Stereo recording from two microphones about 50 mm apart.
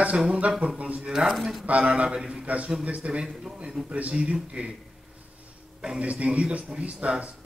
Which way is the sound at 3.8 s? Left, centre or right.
Right.